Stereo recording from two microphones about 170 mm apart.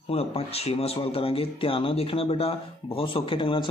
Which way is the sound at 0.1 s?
35° left (ahead or behind).